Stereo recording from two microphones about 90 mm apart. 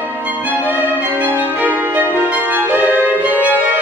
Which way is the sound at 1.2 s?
20° right (ahead or behind).